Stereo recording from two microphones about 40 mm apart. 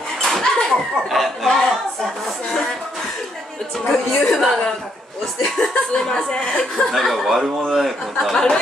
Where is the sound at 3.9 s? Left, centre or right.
Centre.